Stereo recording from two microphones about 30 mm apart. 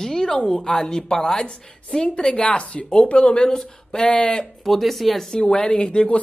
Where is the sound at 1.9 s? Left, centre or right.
Left.